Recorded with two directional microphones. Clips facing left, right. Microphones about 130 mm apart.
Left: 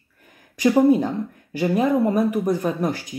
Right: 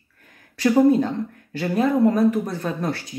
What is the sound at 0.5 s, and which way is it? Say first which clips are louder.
Speech: even; 15° left (ahead or behind).